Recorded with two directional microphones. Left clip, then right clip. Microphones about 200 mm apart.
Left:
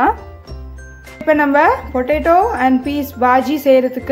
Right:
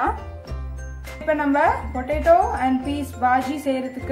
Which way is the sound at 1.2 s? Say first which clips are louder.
Left 7 dB; 50° left (ahead or behind).